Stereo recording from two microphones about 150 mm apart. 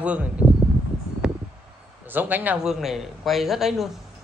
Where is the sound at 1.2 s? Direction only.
5° right (ahead or behind).